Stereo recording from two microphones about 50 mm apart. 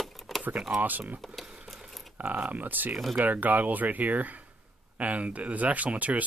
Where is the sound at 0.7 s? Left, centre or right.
Right.